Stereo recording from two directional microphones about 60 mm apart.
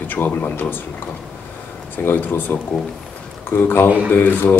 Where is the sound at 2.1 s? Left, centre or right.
Left.